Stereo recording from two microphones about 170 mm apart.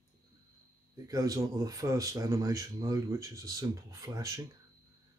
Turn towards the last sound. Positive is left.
turn(degrees=-20)  # may be behind; listen again after turning